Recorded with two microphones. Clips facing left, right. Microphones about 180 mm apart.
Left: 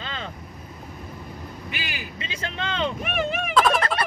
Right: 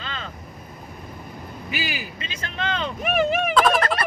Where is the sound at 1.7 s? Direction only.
5° right (ahead or behind).